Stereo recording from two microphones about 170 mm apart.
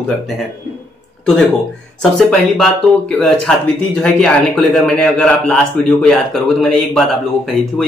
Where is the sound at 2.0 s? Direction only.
5° left (ahead or behind).